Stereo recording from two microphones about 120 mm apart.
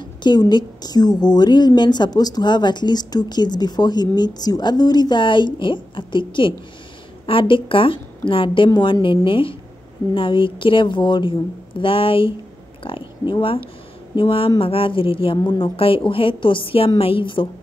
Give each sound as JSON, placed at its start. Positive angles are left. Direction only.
{"t": 0.0, "sound": "a woman's voice", "side_deg": 40}